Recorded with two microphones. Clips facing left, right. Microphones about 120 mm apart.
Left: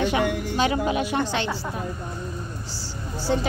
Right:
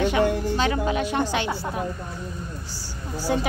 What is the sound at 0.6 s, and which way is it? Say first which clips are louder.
Speech: left 1 dB; 10° left (ahead or behind).